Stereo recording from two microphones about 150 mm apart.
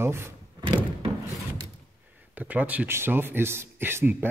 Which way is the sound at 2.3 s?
10° right (ahead or behind).